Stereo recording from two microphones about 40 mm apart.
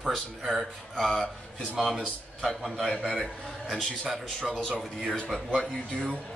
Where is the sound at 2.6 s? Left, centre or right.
Centre.